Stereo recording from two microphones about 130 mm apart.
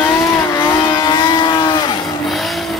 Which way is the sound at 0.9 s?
35° left (ahead or behind).